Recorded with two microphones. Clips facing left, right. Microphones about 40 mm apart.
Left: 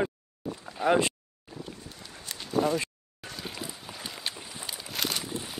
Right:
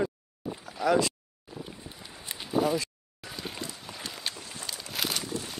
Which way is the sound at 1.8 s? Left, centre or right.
Centre.